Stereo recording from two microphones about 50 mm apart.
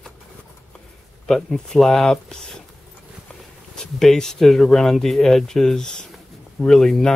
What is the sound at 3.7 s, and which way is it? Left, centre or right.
Speech, centre.